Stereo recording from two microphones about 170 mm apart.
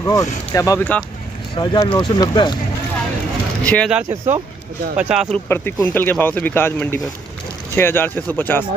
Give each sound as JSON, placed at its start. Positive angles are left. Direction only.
{"t": 0.0, "sound": "speech", "side_deg": 15}
{"t": 1.5, "sound": "speech", "side_deg": 25}
{"t": 3.6, "sound": "speech", "side_deg": 10}
{"t": 4.9, "sound": "speech", "side_deg": -5}
{"t": 5.5, "sound": "speech", "side_deg": 10}